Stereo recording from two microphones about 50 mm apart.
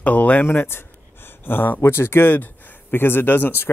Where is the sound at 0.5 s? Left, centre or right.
Left.